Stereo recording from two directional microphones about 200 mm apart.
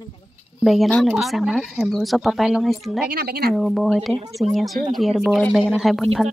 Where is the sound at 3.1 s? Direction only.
55° right (ahead or behind).